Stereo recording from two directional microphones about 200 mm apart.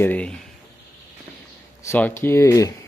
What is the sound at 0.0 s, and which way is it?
Speech, 10° left (ahead or behind).